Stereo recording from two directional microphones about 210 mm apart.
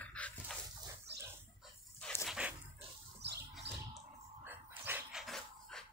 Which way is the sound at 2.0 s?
5° left (ahead or behind).